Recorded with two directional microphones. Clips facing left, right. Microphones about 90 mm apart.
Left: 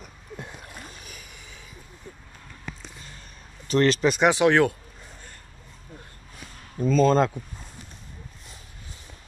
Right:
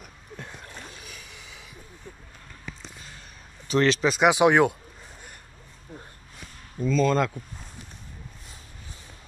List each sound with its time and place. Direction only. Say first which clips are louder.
0.4 s a sound: even; 10° left (ahead or behind)
3.6 s a man's voice: left 1 dB; centre (ahead or behind)
4.4 s speech: even; 15° right (ahead or behind)
6.8 s speech: left 3 dB; 45° left (ahead or behind)